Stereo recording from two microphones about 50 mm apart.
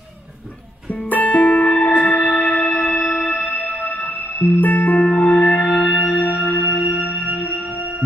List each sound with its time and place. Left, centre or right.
0.8 s music: left
1.3 s music: left